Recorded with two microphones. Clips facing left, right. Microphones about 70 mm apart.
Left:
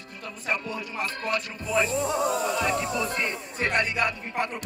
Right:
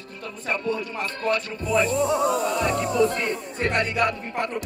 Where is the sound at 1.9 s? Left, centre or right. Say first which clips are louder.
Right 4 dB; right.